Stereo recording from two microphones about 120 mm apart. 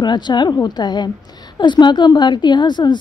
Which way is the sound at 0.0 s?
40° left (ahead or behind).